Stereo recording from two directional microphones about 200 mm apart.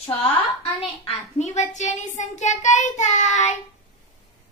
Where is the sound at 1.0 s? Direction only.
35° left (ahead or behind).